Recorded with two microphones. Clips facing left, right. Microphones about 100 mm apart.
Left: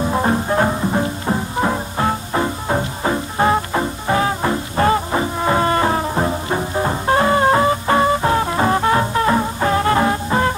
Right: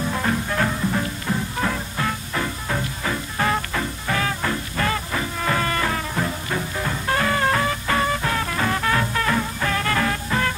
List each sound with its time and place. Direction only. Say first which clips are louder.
0.0 s music: left 6 dB; 35° left (ahead or behind)